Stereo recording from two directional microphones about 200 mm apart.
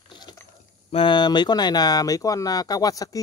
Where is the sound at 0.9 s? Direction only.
25° left (ahead or behind).